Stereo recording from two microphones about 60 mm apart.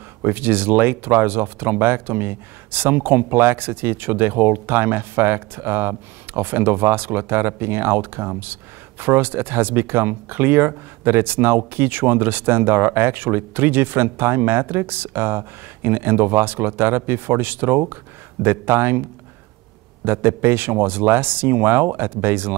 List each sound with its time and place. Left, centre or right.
0.2 s speech: right
20.1 s speech: right